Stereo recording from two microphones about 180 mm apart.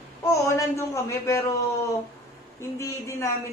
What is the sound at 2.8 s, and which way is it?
Speech, 15° left (ahead or behind).